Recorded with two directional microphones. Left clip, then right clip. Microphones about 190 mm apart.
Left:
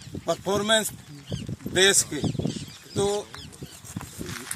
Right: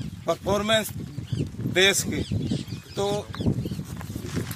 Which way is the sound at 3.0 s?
15° right (ahead or behind).